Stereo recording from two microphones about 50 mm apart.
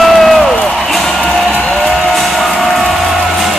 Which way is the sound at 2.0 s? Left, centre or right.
Centre.